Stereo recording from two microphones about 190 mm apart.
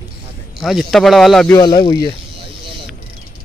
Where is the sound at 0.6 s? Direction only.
Centre (ahead or behind).